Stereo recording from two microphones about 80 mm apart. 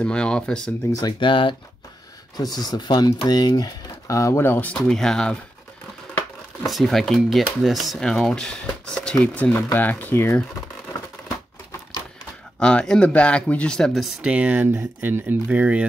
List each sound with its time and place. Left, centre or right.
0.0 s speech: centre
1.2 s speech: left
2.3 s speech: left
4.5 s speech: left
4.7 s speech: centre
6.6 s speech: centre; by 10.3 s left
12.5 s speech: centre
14.0 s speech: centre